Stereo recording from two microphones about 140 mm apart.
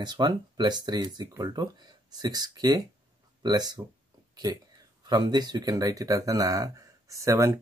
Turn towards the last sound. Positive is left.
turn(degrees=-20)  # may be behind; listen again after turning